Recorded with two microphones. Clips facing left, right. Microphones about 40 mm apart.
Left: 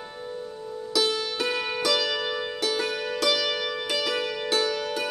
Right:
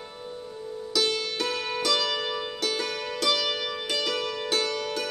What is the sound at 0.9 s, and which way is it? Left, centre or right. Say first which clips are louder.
Music: left 1 dB; centre.